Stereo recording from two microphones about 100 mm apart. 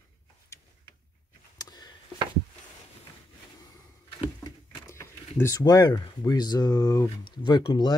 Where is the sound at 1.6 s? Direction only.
40° left (ahead or behind).